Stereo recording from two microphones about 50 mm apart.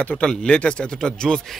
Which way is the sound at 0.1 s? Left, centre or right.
Centre.